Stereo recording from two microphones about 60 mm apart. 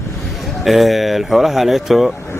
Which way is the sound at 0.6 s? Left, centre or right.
Centre.